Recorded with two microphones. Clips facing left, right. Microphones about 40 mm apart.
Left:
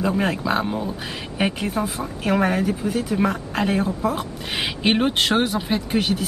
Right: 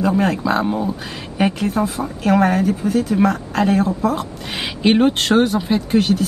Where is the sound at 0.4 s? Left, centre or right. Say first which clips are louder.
Right 4 dB; centre.